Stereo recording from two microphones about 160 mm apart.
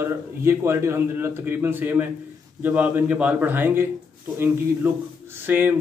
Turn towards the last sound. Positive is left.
turn(degrees=-10)  # may be behind; listen again after turning